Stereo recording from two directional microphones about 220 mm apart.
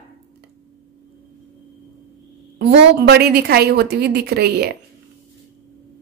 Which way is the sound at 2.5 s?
50° right (ahead or behind).